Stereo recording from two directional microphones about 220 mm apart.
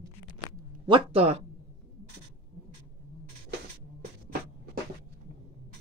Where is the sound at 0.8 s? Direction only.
25° right (ahead or behind).